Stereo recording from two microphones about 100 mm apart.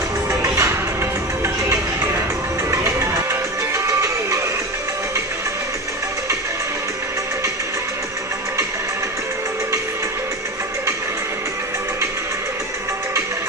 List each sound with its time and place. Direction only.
0.3 s music: 30° right (ahead or behind)